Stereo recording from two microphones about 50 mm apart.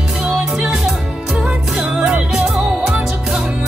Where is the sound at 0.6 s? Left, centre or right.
Centre.